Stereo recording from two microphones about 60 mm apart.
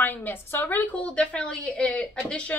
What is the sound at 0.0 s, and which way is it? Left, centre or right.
A woman's voice, left.